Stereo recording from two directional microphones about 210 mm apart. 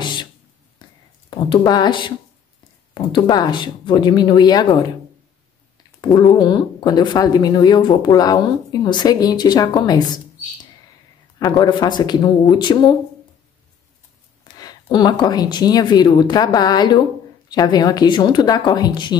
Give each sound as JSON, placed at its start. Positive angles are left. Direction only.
{"t": 0.0, "sound": "a sound", "side_deg": 20}
{"t": 1.3, "sound": "speech", "side_deg": 20}
{"t": 5.9, "sound": "speech", "side_deg": 20}
{"t": 14.4, "sound": "speech", "side_deg": 20}